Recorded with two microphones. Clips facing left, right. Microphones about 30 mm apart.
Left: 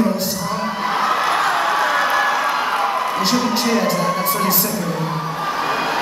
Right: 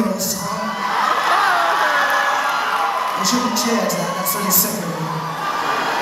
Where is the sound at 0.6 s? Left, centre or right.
Centre.